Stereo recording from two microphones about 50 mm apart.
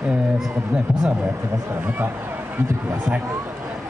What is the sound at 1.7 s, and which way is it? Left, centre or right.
Speech, right.